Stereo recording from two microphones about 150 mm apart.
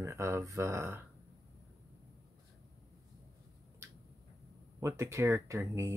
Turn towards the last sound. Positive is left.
turn(degrees=-20)  # may be behind; listen again after turning